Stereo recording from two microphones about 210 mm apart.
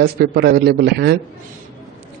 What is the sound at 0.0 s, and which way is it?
A man's voice, 50° right (ahead or behind).